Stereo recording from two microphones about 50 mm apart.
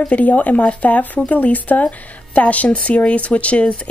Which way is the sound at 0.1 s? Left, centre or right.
Left.